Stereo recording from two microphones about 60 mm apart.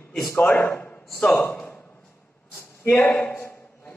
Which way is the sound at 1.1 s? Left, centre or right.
Centre.